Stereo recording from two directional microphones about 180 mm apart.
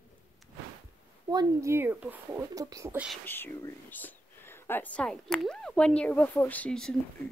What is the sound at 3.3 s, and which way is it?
Speech, 10° left (ahead or behind).